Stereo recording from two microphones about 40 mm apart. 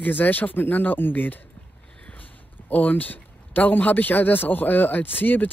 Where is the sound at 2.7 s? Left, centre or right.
Left.